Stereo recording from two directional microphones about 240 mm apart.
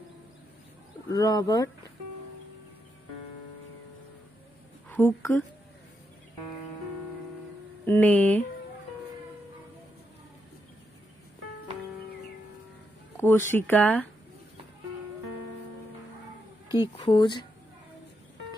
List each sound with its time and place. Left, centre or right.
1.1 s speech: centre
4.8 s a woman's voice: centre
7.8 s speech: centre
13.2 s speech: centre
16.8 s speech: centre